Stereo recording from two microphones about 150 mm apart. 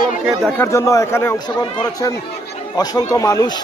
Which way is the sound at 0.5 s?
20° left (ahead or behind).